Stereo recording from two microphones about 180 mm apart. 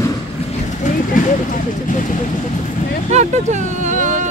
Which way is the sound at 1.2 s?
45° left (ahead or behind).